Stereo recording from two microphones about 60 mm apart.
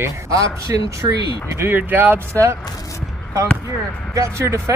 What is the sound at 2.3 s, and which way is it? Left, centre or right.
Speech, right.